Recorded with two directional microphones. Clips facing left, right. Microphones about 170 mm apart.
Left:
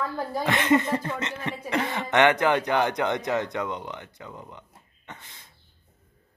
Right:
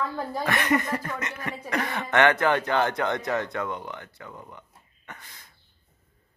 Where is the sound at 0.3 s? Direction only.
20° left (ahead or behind).